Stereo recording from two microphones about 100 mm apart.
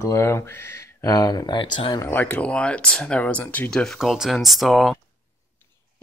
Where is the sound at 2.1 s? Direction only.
15° left (ahead or behind).